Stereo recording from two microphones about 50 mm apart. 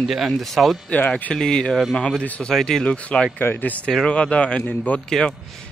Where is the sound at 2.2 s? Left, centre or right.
Left.